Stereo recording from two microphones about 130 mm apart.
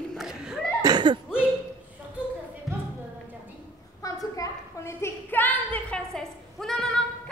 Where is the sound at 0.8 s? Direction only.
35° right (ahead or behind).